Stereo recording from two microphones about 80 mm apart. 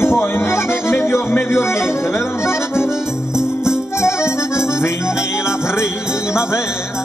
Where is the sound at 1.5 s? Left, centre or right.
Left.